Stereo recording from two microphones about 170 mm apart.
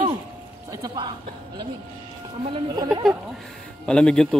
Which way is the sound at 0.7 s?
25° right (ahead or behind).